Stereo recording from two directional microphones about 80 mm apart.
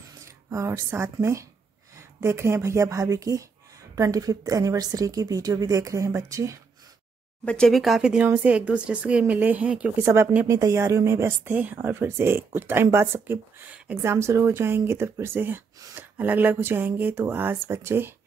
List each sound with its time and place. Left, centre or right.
0.2 s a woman's voice: right
7.4 s speech: centre
7.7 s speech: centre
8.0 s speech: centre
10.4 s speech: right